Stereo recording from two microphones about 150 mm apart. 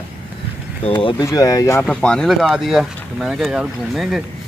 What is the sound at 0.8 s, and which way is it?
Speech, 35° left (ahead or behind).